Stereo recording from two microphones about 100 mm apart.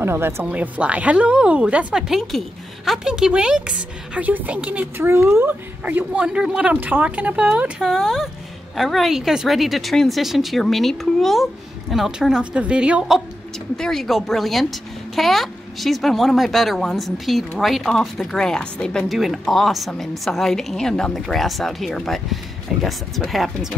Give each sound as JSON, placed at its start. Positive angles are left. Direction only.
{"t": 0.0, "sound": "speech", "side_deg": -25}
{"t": 0.5, "sound": "a woman's voice", "side_deg": -15}
{"t": 13.7, "sound": "a woman's voice", "side_deg": 5}